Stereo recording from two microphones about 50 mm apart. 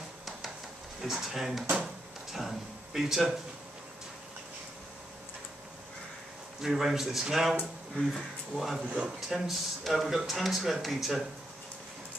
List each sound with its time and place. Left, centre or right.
1.0 s speech: centre
6.6 s speech: centre
8.8 s a man's voice: right
9.3 s speech: centre